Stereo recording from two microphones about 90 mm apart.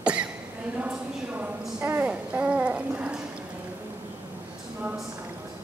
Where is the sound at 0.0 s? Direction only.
10° right (ahead or behind).